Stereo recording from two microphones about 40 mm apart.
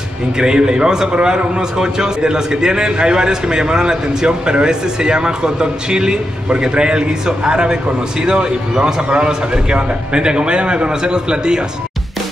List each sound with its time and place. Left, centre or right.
0.4 s a man's voice: centre